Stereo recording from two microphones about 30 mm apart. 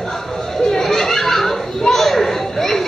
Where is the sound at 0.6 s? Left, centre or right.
Centre.